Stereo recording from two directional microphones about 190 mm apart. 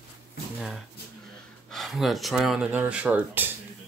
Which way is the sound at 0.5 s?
Centre (ahead or behind).